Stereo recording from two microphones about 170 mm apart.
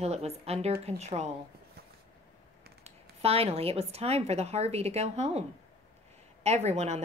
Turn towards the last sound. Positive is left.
turn(degrees=-40)  # may be behind; listen again after turning